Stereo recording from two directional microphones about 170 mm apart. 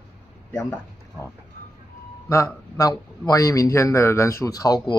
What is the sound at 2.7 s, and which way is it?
A man's voice, 20° left (ahead or behind).